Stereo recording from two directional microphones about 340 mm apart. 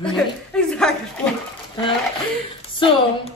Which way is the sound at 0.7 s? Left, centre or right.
Centre.